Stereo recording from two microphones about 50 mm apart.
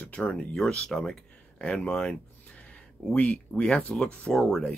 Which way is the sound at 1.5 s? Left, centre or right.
Left.